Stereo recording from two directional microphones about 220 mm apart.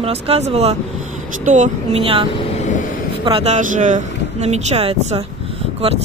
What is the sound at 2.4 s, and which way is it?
Vehicle, 30° left (ahead or behind).